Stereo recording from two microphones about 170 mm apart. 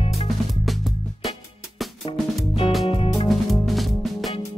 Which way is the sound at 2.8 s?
35° left (ahead or behind).